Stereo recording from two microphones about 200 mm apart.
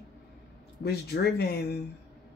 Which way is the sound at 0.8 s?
55° left (ahead or behind).